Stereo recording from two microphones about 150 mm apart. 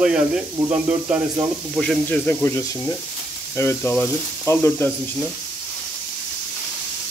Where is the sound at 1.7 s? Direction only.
5° left (ahead or behind).